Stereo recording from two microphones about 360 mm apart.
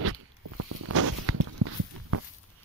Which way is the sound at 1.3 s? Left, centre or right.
Right.